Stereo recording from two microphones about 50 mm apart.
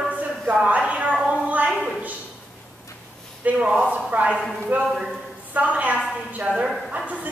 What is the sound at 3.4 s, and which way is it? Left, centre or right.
A woman's voice, right.